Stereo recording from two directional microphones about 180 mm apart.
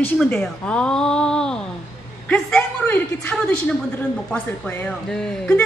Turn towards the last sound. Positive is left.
turn(degrees=5)  # may be behind; listen again after turning